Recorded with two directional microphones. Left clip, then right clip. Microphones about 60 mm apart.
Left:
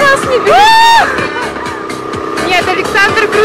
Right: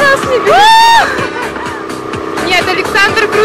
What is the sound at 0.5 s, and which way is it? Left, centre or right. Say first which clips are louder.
Crowd: even; right.